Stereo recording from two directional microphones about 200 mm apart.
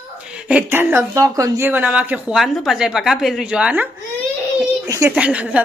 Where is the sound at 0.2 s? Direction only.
5° right (ahead or behind).